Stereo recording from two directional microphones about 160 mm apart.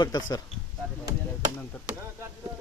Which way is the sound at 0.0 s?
25° left (ahead or behind).